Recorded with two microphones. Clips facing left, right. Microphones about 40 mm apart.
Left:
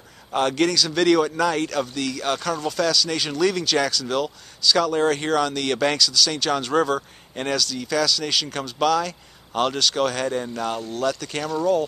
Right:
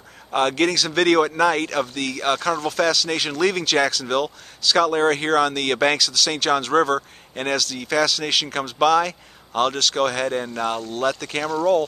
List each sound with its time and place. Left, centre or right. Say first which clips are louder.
0.4 s speech: right 1 dB; centre
6.6 s speech: right 1 dB; centre
7.0 s speech: right 1 dB; centre
7.8 s speech: right 3 dB; right
9.6 s speech: right 1 dB; centre; by 11.2 s right